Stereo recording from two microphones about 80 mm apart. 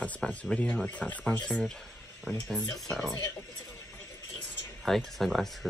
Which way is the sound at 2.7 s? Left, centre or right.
Centre.